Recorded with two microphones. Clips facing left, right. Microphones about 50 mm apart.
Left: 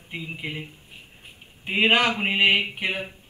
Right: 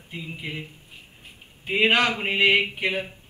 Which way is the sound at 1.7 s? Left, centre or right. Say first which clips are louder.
Even; centre.